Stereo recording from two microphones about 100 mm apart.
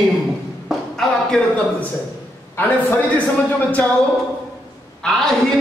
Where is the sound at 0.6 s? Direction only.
5° left (ahead or behind).